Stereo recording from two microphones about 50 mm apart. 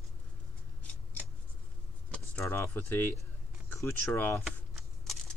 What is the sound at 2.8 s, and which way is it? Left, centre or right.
Speech, left.